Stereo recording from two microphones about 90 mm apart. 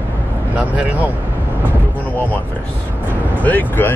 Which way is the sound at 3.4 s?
20° left (ahead or behind).